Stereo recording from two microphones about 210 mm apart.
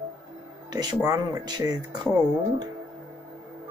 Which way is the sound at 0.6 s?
20° right (ahead or behind).